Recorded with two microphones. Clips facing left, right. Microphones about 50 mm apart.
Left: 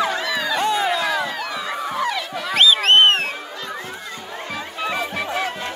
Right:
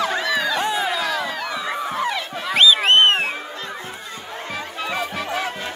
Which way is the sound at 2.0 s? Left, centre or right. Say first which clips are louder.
Even; centre.